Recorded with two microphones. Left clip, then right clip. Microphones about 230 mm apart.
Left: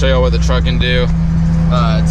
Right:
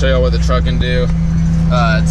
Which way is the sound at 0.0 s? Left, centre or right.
Centre.